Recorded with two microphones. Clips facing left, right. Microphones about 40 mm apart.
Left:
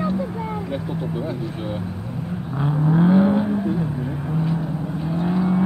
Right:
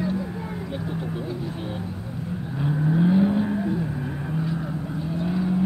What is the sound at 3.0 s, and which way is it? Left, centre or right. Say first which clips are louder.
Vehicle: left 4 dB; left.